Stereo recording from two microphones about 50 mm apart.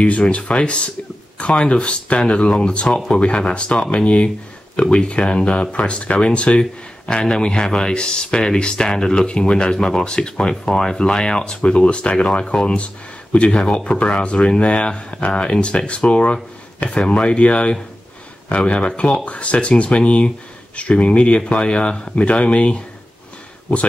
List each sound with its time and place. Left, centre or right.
0.0 s speech: left